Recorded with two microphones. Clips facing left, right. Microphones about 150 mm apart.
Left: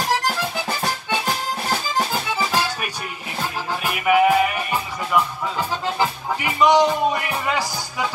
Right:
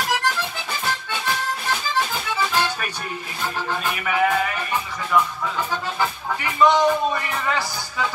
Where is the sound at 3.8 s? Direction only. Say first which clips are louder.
Left 6 dB; 15° left (ahead or behind).